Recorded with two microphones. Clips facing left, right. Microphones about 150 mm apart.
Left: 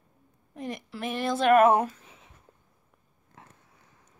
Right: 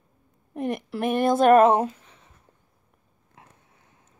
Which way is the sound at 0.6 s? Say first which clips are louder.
Right 8 dB; 60° right (ahead or behind).